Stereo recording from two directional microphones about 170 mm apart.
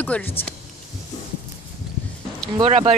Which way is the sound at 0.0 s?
10° left (ahead or behind).